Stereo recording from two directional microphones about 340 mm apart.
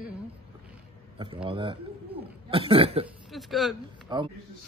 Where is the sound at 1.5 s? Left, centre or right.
Centre.